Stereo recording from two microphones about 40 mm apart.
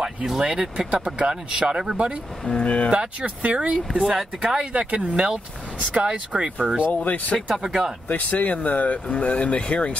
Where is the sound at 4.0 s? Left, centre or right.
Centre.